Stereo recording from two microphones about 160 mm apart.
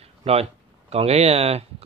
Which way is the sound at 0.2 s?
40° right (ahead or behind).